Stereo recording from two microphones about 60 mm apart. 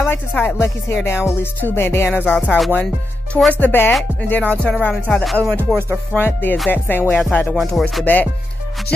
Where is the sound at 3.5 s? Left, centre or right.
Left.